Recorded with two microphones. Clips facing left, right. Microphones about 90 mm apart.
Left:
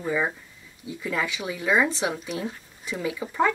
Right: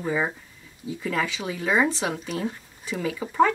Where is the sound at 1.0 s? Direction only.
5° left (ahead or behind).